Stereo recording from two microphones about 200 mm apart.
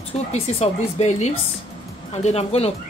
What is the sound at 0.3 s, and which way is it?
Speech, 35° left (ahead or behind).